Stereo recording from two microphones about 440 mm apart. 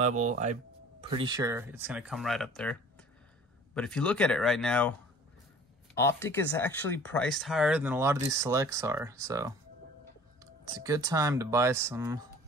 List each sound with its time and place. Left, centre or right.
0.0 s speech: centre
5.9 s speech: centre